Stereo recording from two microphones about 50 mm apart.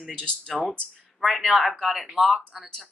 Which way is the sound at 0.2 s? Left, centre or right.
Centre.